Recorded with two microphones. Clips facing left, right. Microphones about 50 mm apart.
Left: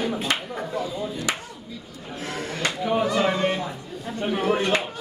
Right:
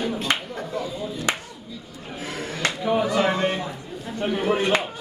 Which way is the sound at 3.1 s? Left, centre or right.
Right.